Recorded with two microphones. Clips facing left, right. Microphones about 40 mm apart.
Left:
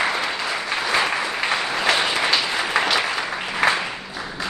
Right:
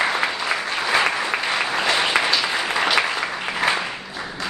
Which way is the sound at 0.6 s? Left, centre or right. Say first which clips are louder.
Even; centre.